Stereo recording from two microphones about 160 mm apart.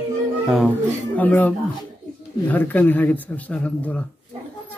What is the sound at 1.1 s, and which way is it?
Child singing, 10° left (ahead or behind).